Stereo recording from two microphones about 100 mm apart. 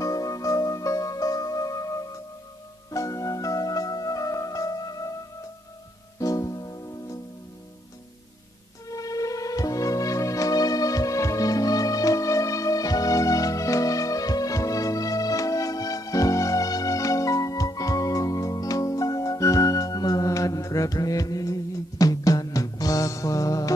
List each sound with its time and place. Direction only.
0.0 s music: 35° left (ahead or behind)
6.1 s music: 35° left (ahead or behind)
8.9 s music: 35° left (ahead or behind)